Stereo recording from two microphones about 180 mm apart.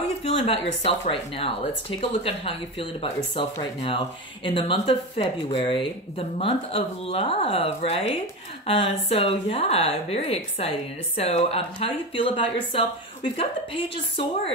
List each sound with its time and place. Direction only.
0.2 s a woman's voice: 30° left (ahead or behind)